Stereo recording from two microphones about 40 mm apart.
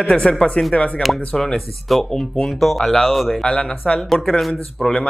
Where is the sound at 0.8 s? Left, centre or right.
Left.